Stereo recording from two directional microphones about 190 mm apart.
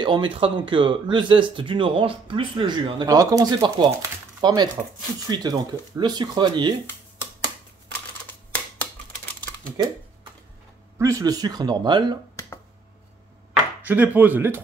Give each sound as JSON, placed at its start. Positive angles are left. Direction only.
{"t": 0.0, "sound": "speech", "side_deg": -25}
{"t": 7.9, "sound": "typewriter", "side_deg": 10}
{"t": 11.0, "sound": "speech", "side_deg": -15}
{"t": 13.5, "sound": "speech", "side_deg": -10}